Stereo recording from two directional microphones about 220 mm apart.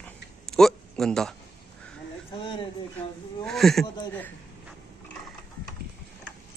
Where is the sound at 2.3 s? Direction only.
25° left (ahead or behind).